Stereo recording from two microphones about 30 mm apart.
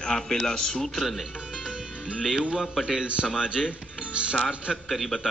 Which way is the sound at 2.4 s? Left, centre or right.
Right.